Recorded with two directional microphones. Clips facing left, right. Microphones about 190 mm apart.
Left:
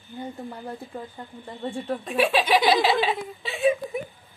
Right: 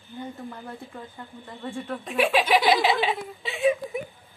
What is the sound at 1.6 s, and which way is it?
Speech, 35° left (ahead or behind).